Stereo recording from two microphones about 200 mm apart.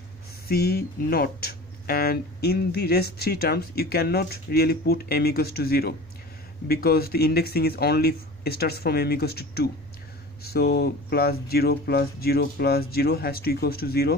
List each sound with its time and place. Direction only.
0.5 s speech: 50° left (ahead or behind)